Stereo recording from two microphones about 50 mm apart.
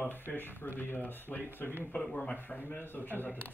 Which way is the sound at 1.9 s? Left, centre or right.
Centre.